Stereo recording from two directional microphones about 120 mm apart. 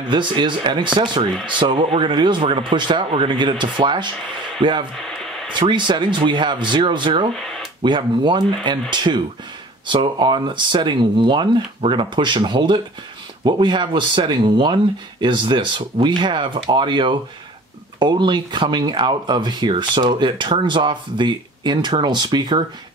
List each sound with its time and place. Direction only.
0.1 s speech: 40° right (ahead or behind)
5.0 s a sound: 5° left (ahead or behind)
5.5 s speech: 40° right (ahead or behind)